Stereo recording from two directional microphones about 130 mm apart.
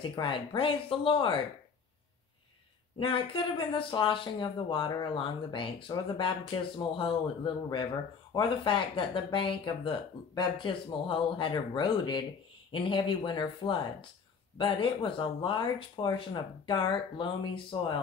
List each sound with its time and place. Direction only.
0.0 s speech: 40° left (ahead or behind)
3.0 s speech: 40° left (ahead or behind)